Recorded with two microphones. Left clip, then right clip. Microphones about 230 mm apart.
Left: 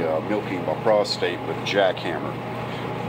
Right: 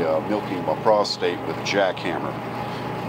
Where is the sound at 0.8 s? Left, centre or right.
Centre.